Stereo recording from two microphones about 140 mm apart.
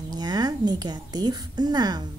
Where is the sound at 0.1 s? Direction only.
30° right (ahead or behind).